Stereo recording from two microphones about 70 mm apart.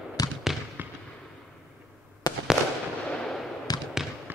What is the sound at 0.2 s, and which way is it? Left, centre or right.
Basketball bounce, left.